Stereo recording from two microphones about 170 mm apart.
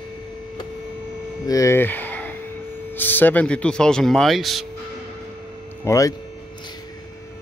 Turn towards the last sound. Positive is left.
turn(degrees=20)  # may be behind; listen again after turning